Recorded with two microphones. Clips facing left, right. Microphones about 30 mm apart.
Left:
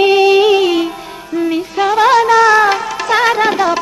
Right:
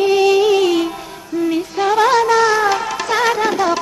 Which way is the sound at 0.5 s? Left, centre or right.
Centre.